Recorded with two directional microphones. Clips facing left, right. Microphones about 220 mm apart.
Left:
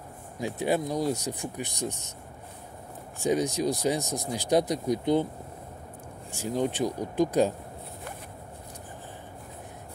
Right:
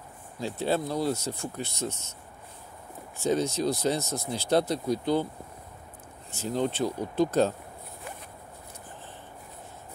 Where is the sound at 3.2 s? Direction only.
15° left (ahead or behind).